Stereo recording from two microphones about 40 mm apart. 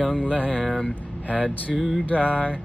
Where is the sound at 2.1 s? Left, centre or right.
Right.